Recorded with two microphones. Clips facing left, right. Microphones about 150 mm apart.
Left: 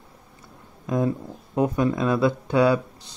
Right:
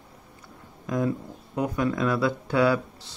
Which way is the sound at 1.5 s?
25° left (ahead or behind).